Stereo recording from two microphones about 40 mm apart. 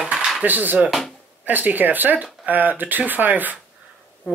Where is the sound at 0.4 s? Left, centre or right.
Right.